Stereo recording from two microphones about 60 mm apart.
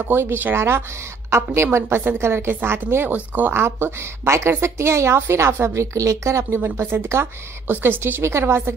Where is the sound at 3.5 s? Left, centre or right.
Right.